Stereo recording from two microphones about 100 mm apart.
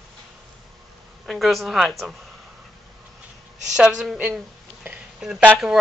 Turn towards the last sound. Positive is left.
turn(degrees=-10)  # may be behind; listen again after turning